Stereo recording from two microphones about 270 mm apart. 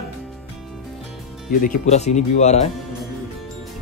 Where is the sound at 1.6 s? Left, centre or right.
Left.